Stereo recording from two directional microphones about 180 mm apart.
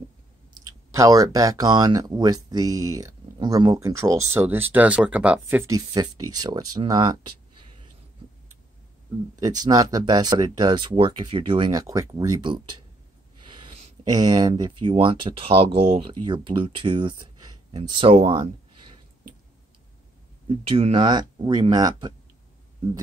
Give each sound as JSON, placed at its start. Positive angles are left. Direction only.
{"t": 0.9, "sound": "speech", "side_deg": -20}
{"t": 9.6, "sound": "speech", "side_deg": -20}
{"t": 20.4, "sound": "speech", "side_deg": -30}